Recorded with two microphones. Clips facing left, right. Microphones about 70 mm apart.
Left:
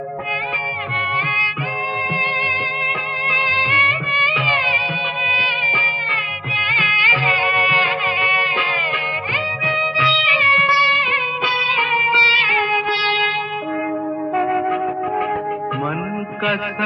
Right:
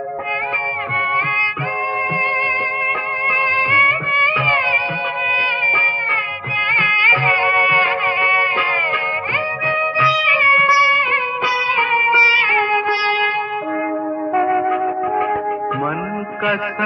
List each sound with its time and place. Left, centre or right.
3.5 s music: centre
7.1 s music: centre
9.7 s music: centre
14.3 s music: centre